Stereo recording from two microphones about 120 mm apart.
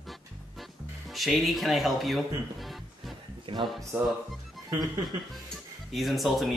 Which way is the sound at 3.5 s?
50° right (ahead or behind).